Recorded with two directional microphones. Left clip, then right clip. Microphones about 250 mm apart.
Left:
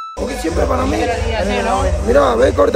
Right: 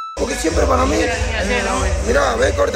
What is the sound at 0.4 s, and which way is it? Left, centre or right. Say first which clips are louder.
Speech: right 1 dB; centre.